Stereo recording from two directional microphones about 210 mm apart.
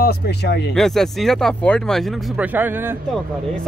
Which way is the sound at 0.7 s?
Centre (ahead or behind).